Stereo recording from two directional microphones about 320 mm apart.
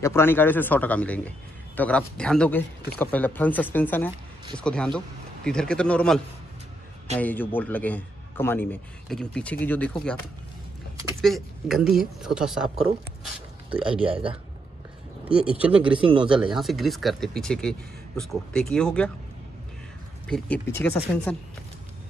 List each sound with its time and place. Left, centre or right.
0.0 s a man's voice: centre
11.1 s a man's voice: centre
15.2 s a man's voice: centre
16.0 s speech: centre
16.5 s a man's voice: centre
20.2 s a man's voice: centre